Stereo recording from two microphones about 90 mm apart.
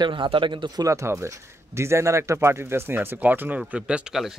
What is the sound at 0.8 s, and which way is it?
Speech, 35° right (ahead or behind).